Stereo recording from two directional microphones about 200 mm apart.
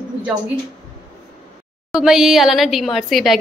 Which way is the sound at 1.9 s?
5° right (ahead or behind).